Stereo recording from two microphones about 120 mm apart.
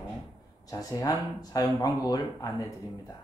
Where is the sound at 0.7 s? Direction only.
30° left (ahead or behind).